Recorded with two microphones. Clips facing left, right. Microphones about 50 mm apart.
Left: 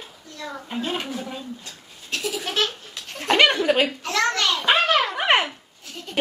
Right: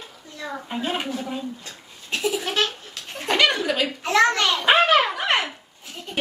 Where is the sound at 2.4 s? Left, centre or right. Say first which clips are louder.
Right 1 dB; centre.